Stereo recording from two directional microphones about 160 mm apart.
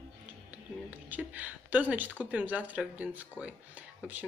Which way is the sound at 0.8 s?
10° right (ahead or behind).